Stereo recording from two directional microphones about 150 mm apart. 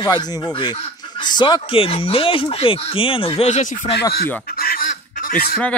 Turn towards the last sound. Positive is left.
turn(degrees=80)